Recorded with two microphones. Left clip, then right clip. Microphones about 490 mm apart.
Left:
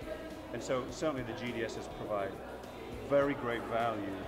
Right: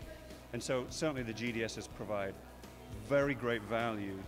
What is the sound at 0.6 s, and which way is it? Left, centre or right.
Speech, right.